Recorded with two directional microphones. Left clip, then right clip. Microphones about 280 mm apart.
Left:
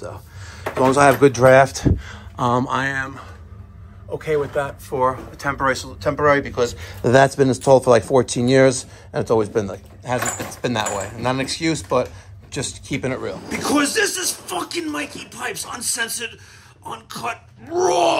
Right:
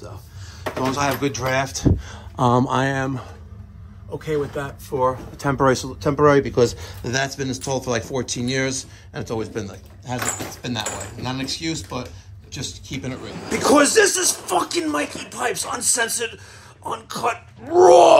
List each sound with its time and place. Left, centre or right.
0.0 s speech: centre
2.0 s speech: right
4.2 s speech: centre; by 6.8 s right
7.0 s a man's voice: centre
13.5 s a man's voice: centre